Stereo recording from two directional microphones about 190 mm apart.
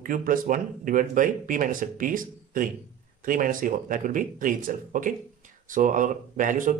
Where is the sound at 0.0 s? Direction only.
45° right (ahead or behind).